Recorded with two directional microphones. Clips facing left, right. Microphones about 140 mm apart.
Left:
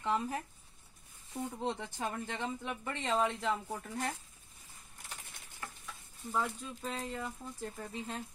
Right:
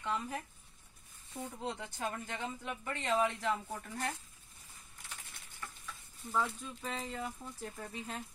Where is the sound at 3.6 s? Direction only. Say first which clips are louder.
Left 2 dB; 10° left (ahead or behind).